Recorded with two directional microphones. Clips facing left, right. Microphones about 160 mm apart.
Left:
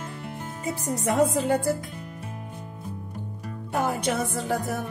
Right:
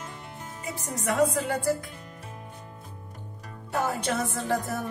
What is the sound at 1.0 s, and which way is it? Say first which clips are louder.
Speech: left 2 dB; 20° left (ahead or behind).